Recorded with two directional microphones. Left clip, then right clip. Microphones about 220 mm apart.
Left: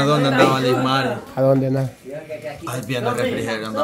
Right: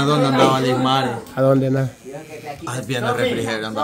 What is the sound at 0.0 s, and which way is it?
A man's voice, centre (ahead or behind).